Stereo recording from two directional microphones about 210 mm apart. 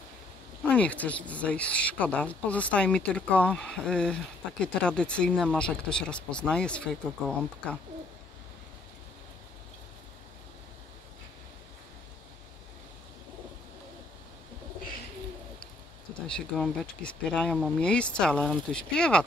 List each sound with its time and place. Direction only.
0.7 s speech: 5° left (ahead or behind)
16.2 s speech: 5° left (ahead or behind)